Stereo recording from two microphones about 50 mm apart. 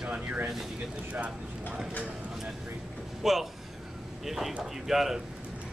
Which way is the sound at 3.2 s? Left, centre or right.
Centre.